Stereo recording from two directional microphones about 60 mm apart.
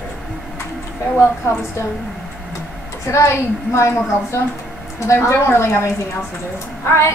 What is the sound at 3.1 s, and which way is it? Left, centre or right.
Speech, left.